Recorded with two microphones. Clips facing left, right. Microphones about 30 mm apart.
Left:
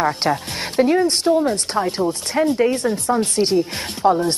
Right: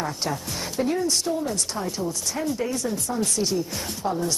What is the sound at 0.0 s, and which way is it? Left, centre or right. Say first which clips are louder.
Speech: left 9 dB; left.